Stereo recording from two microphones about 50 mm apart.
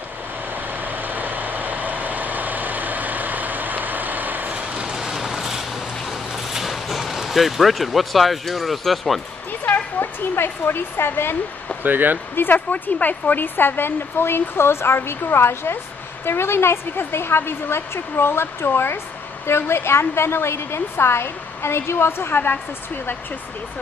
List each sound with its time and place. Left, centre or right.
0.7 s vehicle: right
4.8 s a sound: centre
9.5 s a woman's voice: left
11.8 s speech: right
12.5 s a woman's voice: left